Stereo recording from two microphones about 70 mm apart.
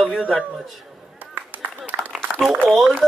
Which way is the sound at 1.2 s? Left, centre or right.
Right.